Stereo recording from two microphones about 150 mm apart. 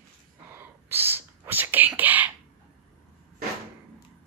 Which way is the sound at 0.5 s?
15° right (ahead or behind).